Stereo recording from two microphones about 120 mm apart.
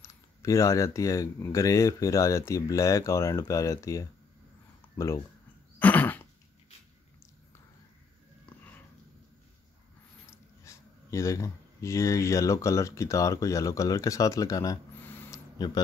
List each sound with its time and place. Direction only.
0.0 s speech: 25° left (ahead or behind)
5.8 s throat clearing: 15° left (ahead or behind)
8.5 s sniff: 10° left (ahead or behind)
10.6 s speech: 25° left (ahead or behind)
15.0 s a sound: 15° left (ahead or behind)
15.3 s a sound: 35° left (ahead or behind)